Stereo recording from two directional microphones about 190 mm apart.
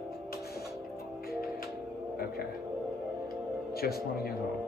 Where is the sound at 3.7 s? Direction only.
55° left (ahead or behind).